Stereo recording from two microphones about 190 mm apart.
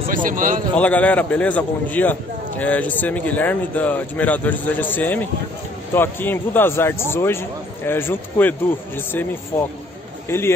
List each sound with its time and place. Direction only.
0.1 s speech: 45° right (ahead or behind)
0.7 s speech: 10° left (ahead or behind)